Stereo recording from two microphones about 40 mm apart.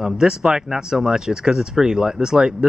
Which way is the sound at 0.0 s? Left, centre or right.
Centre.